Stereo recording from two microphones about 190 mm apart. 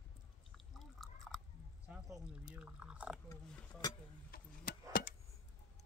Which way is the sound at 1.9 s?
5° right (ahead or behind).